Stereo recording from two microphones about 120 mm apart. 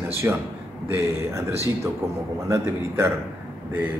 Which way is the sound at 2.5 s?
20° right (ahead or behind).